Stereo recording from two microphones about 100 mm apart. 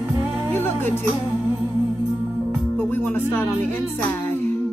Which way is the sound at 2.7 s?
20° left (ahead or behind).